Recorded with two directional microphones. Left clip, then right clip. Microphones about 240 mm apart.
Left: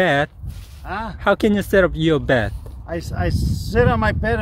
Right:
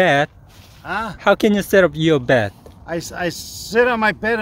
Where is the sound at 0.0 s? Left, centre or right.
Centre.